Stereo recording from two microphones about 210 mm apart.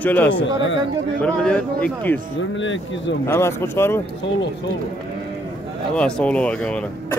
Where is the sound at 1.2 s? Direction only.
5° left (ahead or behind).